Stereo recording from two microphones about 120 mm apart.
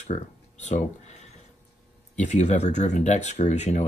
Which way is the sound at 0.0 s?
75° left (ahead or behind).